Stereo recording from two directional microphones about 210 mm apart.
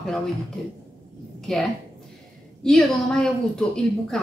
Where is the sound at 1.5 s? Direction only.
Centre (ahead or behind).